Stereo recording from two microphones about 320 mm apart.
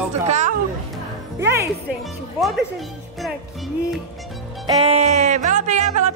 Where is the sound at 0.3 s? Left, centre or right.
Right.